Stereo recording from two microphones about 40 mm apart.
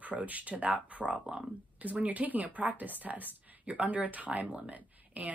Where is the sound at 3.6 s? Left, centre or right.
Right.